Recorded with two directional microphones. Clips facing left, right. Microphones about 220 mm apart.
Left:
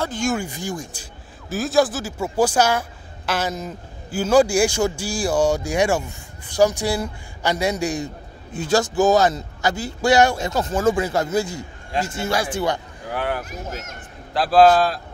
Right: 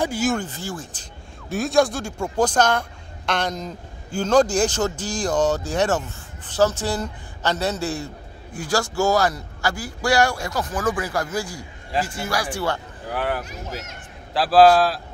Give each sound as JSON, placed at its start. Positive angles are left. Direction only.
{"t": 0.0, "sound": "speech", "side_deg": -5}
{"t": 0.4, "sound": "speech", "side_deg": 15}
{"t": 1.5, "sound": "a man's voice", "side_deg": 0}
{"t": 13.1, "sound": "a man's voice", "side_deg": 0}